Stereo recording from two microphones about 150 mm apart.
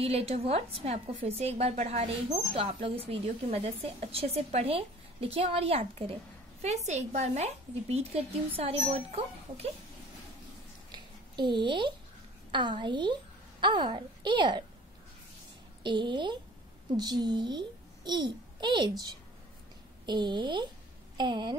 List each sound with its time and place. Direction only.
0.0 s a woman's voice: 45° right (ahead or behind)
10.9 s a sound: 30° right (ahead or behind)
12.4 s a woman's voice: 30° right (ahead or behind)
15.8 s a woman's voice: 30° right (ahead or behind)